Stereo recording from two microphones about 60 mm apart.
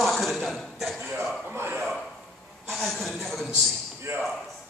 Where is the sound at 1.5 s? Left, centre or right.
Right.